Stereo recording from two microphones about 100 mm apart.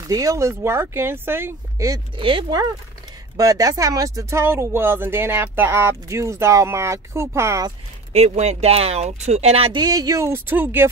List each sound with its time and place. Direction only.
0.0 s speech: 35° right (ahead or behind)
2.1 s speech: 55° right (ahead or behind)
3.3 s speech: 35° right (ahead or behind)
8.1 s speech: 90° right
9.8 s speech: 40° right (ahead or behind)
10.2 s speech: 25° right (ahead or behind)